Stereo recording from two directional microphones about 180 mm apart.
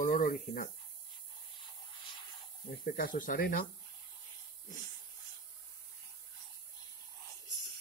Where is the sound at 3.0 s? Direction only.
50° left (ahead or behind).